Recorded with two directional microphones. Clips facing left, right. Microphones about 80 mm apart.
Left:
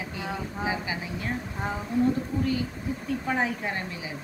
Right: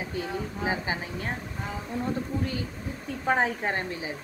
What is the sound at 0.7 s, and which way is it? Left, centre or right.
Speech, right.